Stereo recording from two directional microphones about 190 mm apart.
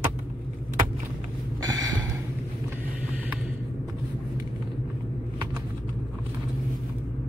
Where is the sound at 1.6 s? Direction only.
20° right (ahead or behind).